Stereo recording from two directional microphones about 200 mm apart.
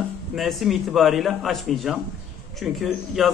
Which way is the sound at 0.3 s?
Centre (ahead or behind).